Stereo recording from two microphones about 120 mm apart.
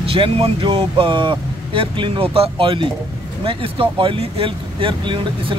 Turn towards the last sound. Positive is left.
turn(degrees=-45)  # may be behind; listen again after turning